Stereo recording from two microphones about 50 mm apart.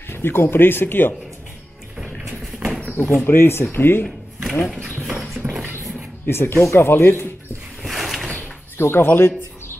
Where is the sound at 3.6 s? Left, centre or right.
Left.